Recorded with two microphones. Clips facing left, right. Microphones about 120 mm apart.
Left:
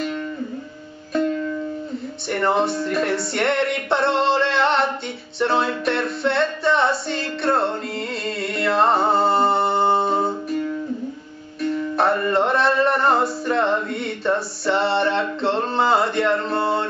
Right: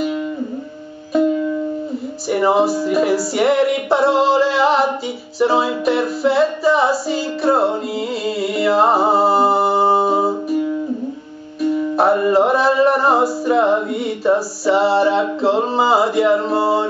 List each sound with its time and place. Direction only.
1.1 s music: 10° right (ahead or behind)